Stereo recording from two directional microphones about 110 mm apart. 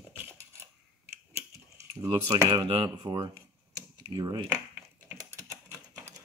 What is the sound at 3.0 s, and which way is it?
Speech, 40° right (ahead or behind).